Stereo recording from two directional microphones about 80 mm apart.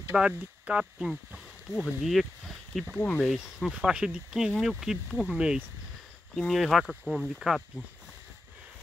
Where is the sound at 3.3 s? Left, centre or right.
Centre.